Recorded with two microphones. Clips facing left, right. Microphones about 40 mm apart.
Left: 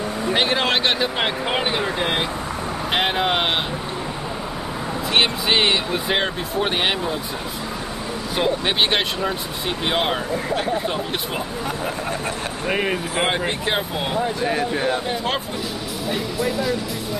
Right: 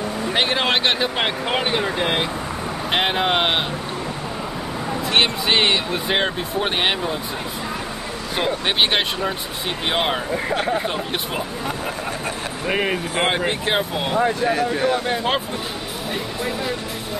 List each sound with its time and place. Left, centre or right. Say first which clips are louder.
0.3 s speech: even; centre
5.1 s speech: even; centre
8.4 s speech: even; centre
10.3 s speech: right 1 dB; right
10.7 s speech: right 1 dB; centre
12.6 s speech: right 1 dB; centre
14.5 s speech: right 2 dB; centre
15.0 s speech: right 2 dB; centre